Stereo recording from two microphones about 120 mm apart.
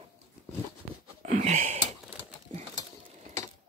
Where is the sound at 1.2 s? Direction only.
85° right.